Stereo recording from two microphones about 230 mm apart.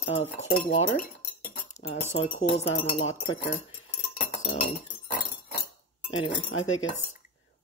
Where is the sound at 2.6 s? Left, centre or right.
Left.